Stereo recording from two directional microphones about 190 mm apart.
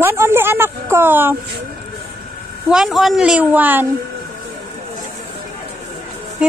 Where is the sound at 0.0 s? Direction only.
10° right (ahead or behind).